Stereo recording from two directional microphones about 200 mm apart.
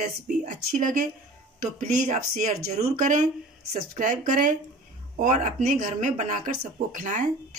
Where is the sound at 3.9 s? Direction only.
40° right (ahead or behind).